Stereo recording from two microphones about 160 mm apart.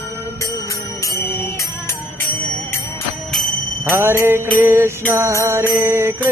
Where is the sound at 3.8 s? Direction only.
15° right (ahead or behind).